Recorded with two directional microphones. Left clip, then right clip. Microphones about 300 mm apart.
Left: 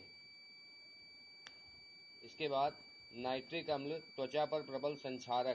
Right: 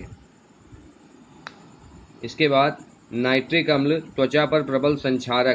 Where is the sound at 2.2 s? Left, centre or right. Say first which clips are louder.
Right 18 dB; left.